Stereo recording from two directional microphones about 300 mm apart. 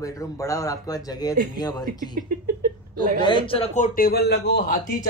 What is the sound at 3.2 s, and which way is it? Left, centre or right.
A man's voice, centre.